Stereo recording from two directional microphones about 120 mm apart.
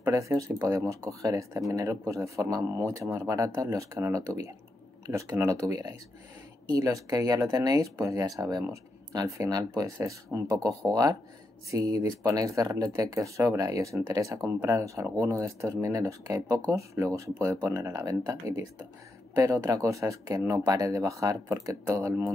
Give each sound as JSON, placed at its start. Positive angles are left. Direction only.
{"t": 0.0, "sound": "speech", "side_deg": -25}